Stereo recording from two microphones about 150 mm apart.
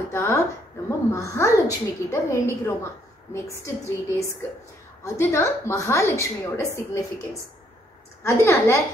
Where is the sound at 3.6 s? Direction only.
20° left (ahead or behind).